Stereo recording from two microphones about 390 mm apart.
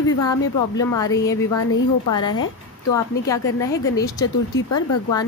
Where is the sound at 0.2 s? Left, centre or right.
Centre.